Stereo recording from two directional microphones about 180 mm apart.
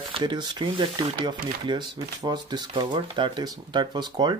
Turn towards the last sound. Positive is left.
turn(degrees=-25)  # may be behind; listen again after turning